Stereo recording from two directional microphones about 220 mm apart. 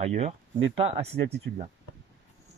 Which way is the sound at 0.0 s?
30° right (ahead or behind).